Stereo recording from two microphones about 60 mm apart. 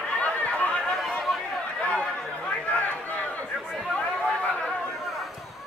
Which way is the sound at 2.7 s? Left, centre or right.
Left.